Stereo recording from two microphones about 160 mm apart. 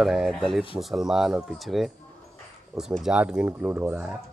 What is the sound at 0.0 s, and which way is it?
Speech, centre (ahead or behind).